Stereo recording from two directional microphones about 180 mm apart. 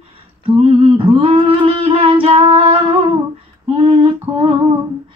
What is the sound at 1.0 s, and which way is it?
Humming, 30° right (ahead or behind).